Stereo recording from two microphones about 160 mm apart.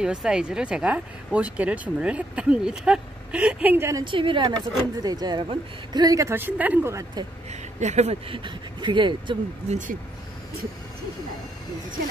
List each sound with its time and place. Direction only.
0.0 s speech: 5° right (ahead or behind)
4.0 s speech: 30° right (ahead or behind)
7.8 s speech: 45° right (ahead or behind)
9.7 s speech: 50° right (ahead or behind)